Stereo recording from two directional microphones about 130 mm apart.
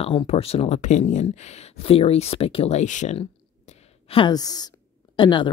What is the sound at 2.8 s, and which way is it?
Speech, 65° left (ahead or behind).